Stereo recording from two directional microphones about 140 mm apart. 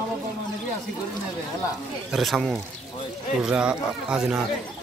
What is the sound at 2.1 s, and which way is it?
Speech, centre (ahead or behind).